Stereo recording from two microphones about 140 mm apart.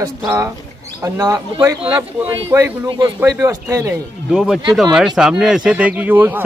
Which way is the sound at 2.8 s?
25° right (ahead or behind).